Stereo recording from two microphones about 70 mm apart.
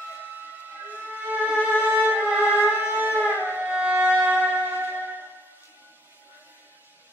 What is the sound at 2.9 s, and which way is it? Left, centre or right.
Shofar, right.